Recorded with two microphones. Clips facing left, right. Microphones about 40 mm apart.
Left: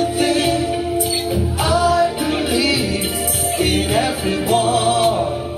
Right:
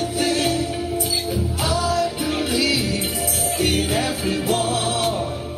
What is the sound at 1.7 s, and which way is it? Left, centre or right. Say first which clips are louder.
Music: left 7 dB; left.